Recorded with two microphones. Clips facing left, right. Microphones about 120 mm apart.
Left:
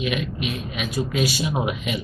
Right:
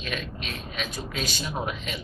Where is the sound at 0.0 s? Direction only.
10° left (ahead or behind).